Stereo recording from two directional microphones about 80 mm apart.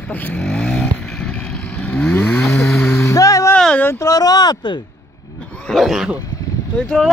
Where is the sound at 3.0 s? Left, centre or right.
Left.